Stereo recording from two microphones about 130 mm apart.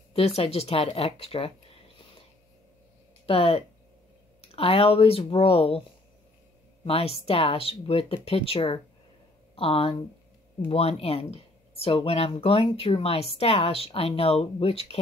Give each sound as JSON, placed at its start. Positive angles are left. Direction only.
{"t": 0.4, "sound": "speech", "side_deg": 50}
{"t": 3.3, "sound": "speech", "side_deg": 45}
{"t": 6.8, "sound": "speech", "side_deg": 45}